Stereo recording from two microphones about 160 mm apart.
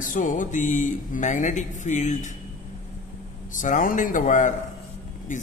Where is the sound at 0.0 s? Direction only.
55° left (ahead or behind).